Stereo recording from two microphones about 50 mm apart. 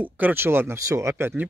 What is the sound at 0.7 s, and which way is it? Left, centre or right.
Speech, right.